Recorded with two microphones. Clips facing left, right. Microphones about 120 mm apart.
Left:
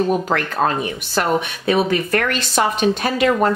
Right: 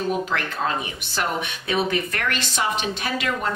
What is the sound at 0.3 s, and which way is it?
A woman's voice, 50° left (ahead or behind).